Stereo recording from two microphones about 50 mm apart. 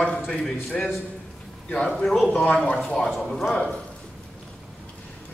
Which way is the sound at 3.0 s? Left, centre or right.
Centre.